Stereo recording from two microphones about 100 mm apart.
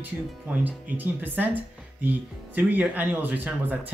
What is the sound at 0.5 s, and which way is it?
Speech, 15° right (ahead or behind).